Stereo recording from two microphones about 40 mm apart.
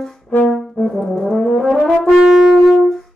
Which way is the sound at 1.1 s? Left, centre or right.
Centre.